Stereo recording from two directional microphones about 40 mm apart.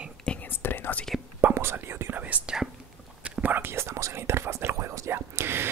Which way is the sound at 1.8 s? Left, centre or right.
Right.